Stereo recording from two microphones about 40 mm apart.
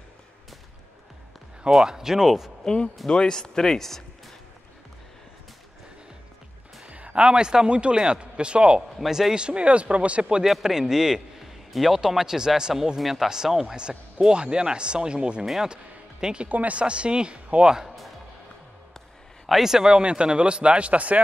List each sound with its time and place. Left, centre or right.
1.9 s speech: centre
2.6 s speech: centre
6.9 s speech: right
8.9 s a man's voice: centre
9.3 s speech: right
10.4 s speech: centre
14.2 s speech: right
15.4 s speech: centre
15.7 s music: right
16.4 s speech: right
16.7 s speech: right
17.7 s music: centre
19.4 s a man's voice: centre
19.7 s speech: centre; by 21.2 s right